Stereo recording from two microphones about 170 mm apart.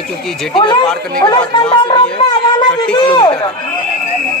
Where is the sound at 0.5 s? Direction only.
30° left (ahead or behind).